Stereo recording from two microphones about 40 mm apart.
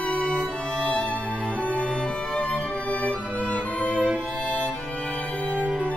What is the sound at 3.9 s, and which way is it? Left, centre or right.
Music, right.